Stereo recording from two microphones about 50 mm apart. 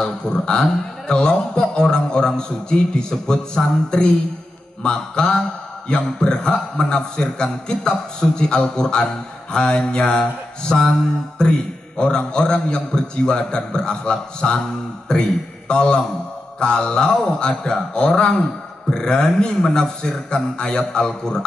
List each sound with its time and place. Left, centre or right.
0.0 s a man's voice: centre
15.7 s a man's voice: centre